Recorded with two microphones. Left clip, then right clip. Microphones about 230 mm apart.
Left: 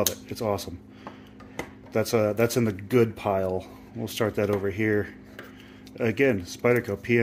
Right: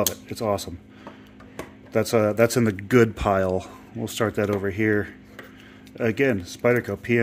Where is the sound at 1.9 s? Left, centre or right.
Right.